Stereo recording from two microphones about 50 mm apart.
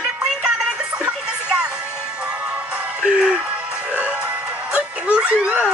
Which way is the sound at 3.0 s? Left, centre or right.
Centre.